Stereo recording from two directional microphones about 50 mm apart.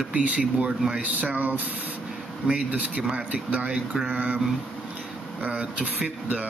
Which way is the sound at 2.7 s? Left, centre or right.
Right.